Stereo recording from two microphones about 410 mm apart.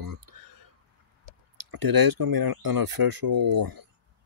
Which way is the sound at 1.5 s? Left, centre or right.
Right.